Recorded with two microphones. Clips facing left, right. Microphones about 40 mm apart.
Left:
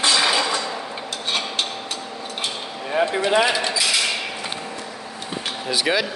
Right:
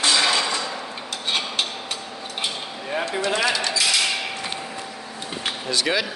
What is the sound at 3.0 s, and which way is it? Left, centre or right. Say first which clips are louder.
Speech: left 5 dB; left.